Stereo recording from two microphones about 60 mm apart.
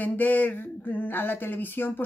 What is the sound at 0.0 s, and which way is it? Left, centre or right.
Speech, left.